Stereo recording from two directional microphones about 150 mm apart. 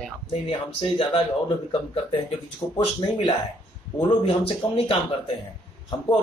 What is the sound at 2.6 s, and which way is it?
Speech, 10° left (ahead or behind).